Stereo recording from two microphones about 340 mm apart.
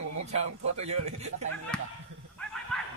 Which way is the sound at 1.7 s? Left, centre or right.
Centre.